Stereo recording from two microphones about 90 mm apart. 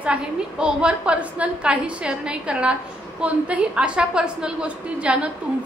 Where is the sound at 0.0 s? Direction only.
10° right (ahead or behind).